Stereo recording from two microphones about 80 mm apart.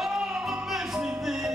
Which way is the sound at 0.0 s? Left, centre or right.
Centre.